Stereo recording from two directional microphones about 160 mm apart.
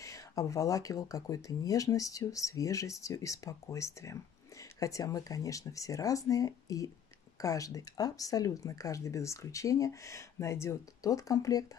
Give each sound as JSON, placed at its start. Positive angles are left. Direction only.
{"t": 0.0, "sound": "speech", "side_deg": 20}